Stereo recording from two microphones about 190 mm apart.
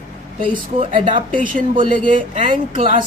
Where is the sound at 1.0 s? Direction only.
45° right (ahead or behind).